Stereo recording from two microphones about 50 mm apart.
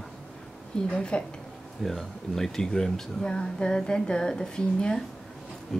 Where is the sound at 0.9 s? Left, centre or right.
Centre.